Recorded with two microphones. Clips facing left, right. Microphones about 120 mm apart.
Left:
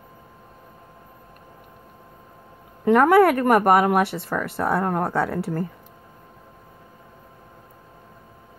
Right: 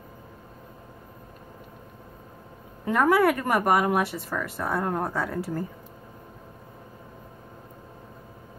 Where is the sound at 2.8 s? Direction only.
60° left (ahead or behind).